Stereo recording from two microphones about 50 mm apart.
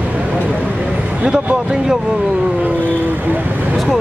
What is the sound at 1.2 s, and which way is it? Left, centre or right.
Speech, centre.